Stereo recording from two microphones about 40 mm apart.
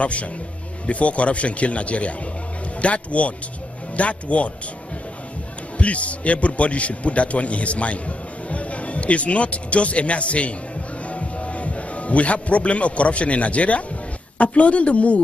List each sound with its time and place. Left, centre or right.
0.0 s a man's voice: left
5.8 s a man's voice: left